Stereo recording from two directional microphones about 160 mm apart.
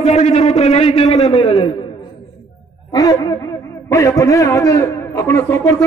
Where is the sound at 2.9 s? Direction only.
20° left (ahead or behind).